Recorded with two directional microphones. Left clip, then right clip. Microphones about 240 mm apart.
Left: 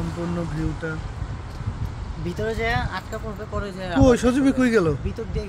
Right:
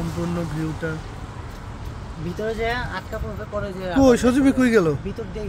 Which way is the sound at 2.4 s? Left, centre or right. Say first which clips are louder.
Even; left.